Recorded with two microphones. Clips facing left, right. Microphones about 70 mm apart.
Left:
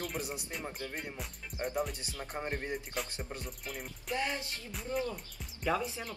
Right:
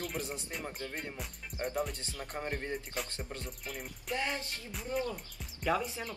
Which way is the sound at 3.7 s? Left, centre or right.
Centre.